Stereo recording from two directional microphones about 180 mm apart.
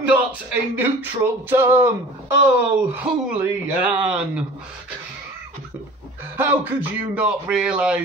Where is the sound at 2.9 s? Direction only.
10° right (ahead or behind).